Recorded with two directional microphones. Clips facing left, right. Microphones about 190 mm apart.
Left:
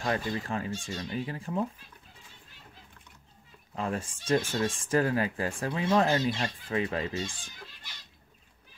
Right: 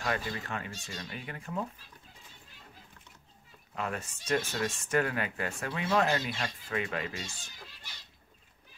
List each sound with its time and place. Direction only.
0.0 s speech: 30° left (ahead or behind)
3.7 s speech: 30° left (ahead or behind)